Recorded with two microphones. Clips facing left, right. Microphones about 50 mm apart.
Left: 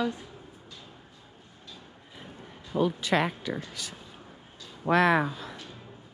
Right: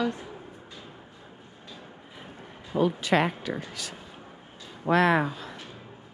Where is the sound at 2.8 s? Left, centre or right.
Right.